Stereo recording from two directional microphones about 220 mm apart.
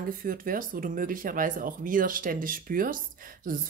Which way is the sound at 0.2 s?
40° right (ahead or behind).